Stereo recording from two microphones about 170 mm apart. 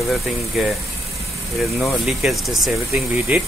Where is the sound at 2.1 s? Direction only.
Centre (ahead or behind).